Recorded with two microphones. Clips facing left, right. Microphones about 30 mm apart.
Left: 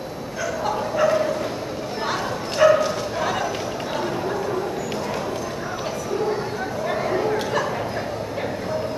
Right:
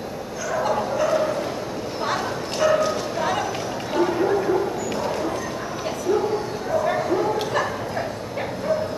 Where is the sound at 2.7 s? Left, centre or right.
Centre.